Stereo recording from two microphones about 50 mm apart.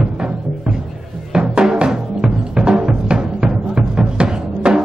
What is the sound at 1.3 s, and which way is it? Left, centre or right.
Music, centre.